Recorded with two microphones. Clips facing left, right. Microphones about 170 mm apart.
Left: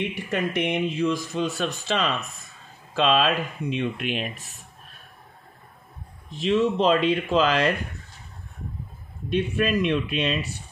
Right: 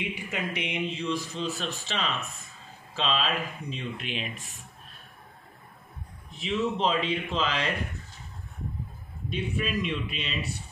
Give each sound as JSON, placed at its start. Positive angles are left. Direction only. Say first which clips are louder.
{"t": 0.3, "sound": "speech", "louder": "left 10 dB", "side_deg": 65}
{"t": 6.3, "sound": "speech", "louder": "left 7 dB", "side_deg": 80}
{"t": 9.3, "sound": "speech", "louder": "left 7 dB", "side_deg": 80}